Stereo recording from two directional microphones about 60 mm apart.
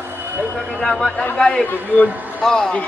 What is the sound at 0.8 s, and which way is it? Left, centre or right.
A man's voice, centre.